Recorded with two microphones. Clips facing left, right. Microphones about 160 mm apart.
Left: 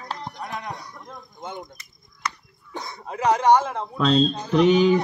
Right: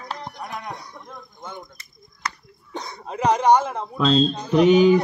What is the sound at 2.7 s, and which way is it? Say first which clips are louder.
Speech: right 1 dB; 20° right (ahead or behind).